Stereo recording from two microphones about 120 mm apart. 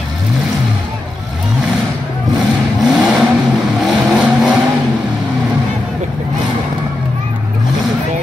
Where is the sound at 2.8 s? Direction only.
Centre (ahead or behind).